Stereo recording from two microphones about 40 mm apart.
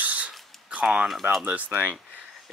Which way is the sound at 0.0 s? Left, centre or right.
Right.